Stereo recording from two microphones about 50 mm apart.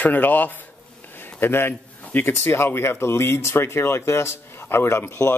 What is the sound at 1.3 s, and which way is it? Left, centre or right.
Speech, left.